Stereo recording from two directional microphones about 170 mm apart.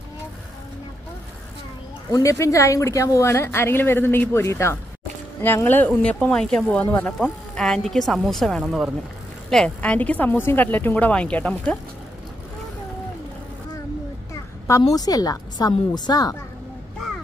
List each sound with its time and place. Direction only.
2.1 s a woman's voice: 15° left (ahead or behind)
14.3 s a woman's voice: 20° left (ahead or behind)